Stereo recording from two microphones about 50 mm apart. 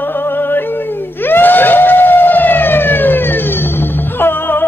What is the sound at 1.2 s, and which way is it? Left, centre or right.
Emergency vehicle, left.